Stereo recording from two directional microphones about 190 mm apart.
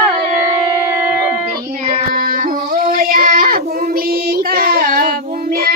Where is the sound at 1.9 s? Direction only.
40° right (ahead or behind).